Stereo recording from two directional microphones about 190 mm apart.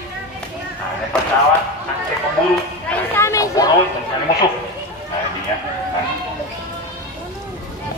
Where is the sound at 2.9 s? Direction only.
15° left (ahead or behind).